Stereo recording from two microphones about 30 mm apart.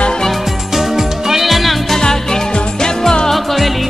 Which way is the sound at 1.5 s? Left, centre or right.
Centre.